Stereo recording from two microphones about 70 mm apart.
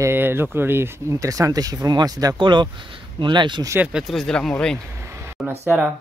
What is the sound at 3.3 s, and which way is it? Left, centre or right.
Speech, right.